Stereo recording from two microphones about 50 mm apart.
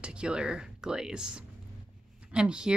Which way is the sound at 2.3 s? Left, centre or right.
Centre.